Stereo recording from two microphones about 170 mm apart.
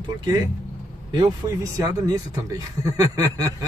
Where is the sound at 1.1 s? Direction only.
25° right (ahead or behind).